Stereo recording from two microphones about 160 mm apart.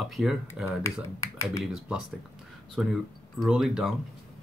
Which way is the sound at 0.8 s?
20° left (ahead or behind).